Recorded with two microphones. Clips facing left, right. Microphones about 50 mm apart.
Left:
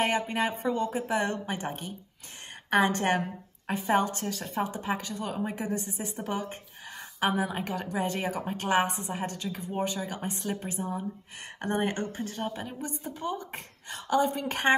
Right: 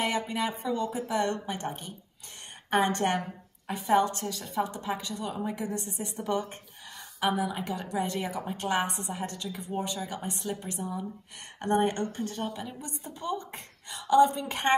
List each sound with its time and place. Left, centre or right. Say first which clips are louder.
0.0 s a woman's voice: left 2 dB; left
3.6 s a woman's voice: right 1 dB; left
13.5 s a sound: left 3 dB; left
14.3 s a woman's voice: left 1 dB; left